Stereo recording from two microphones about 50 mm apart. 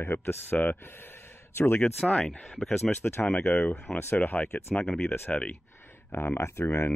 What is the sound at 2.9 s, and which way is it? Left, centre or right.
Speech, centre.